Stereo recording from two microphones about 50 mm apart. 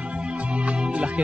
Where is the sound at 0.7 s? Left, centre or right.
Right.